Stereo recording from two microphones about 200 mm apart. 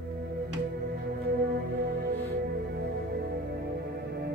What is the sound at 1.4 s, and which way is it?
Music, 50° right (ahead or behind).